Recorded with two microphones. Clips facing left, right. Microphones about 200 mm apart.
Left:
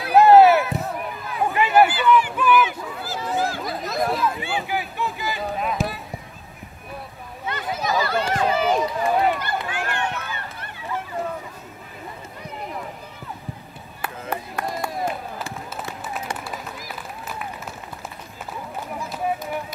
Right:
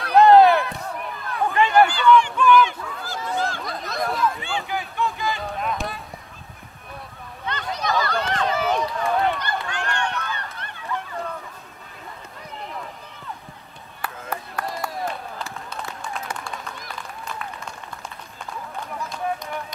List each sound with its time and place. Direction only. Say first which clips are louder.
0.0 s chop: left 1 dB; 5° left (ahead or behind)
0.9 s a sound: left 1 dB; 5° left (ahead or behind)
1.5 s honk: even; 10° left (ahead or behind)
4.4 s a sound: left 2 dB; 10° left (ahead or behind)
7.5 s run: left 1 dB; 5° left (ahead or behind)
14.0 s chop: left 2 dB; 25° left (ahead or behind)
15.7 s run: left 1 dB; 5° left (ahead or behind)
18.5 s run: left 1 dB; 5° left (ahead or behind)